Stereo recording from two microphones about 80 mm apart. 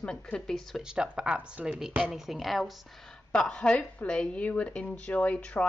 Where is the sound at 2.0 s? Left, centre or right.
Centre.